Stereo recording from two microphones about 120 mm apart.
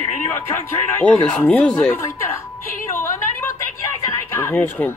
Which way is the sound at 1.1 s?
10° left (ahead or behind).